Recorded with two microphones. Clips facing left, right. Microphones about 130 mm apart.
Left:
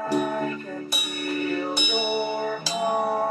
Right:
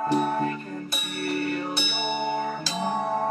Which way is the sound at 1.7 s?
15° left (ahead or behind).